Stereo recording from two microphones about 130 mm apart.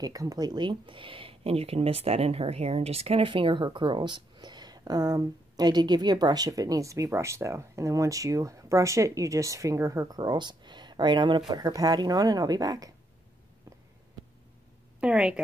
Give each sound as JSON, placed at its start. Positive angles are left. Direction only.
{"t": 0.0, "sound": "speech", "side_deg": -25}
{"t": 15.0, "sound": "a woman's voice", "side_deg": -10}